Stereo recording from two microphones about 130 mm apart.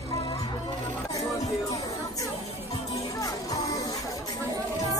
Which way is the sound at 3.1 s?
30° left (ahead or behind).